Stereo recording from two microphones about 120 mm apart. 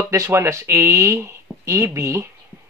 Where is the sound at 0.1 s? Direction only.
25° right (ahead or behind).